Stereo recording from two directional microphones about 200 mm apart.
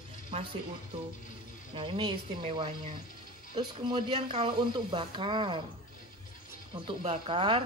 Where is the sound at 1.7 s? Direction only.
25° right (ahead or behind).